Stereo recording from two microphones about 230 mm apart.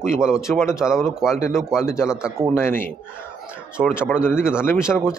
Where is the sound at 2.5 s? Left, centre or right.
Centre.